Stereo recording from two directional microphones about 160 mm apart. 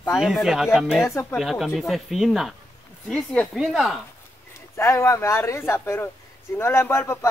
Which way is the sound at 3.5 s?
Centre (ahead or behind).